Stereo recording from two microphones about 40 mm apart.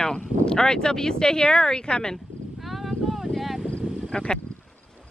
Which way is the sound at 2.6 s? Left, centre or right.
Centre.